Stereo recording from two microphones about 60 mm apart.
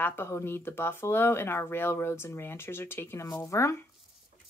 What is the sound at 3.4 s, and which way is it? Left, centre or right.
Speech, left.